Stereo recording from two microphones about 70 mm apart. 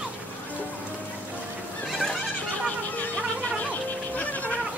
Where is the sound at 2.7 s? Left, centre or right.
Centre.